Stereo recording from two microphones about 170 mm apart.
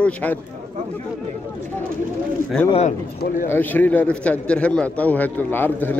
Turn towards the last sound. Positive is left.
turn(degrees=10)  # may be behind; listen again after turning